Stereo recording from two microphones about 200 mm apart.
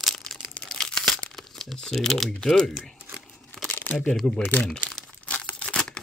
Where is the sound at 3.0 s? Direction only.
Centre (ahead or behind).